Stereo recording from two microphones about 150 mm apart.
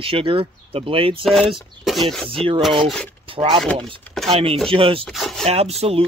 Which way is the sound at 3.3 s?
40° right (ahead or behind).